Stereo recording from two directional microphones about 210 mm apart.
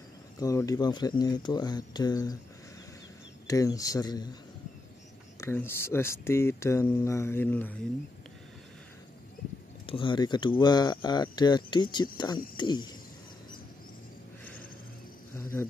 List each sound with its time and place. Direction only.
0.4 s speech: 15° left (ahead or behind)
3.4 s speech: 15° left (ahead or behind)
5.4 s speech: 10° left (ahead or behind)
9.8 s speech: 25° left (ahead or behind)